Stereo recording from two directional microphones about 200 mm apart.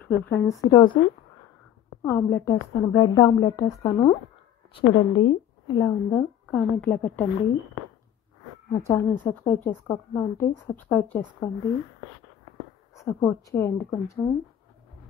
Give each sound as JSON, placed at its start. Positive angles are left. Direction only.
{"t": 0.1, "sound": "a woman's voice", "side_deg": 15}
{"t": 2.0, "sound": "a woman's voice", "side_deg": 10}
{"t": 5.8, "sound": "a woman's voice", "side_deg": 15}
{"t": 8.7, "sound": "a woman's voice", "side_deg": 15}
{"t": 12.9, "sound": "a woman's voice", "side_deg": 15}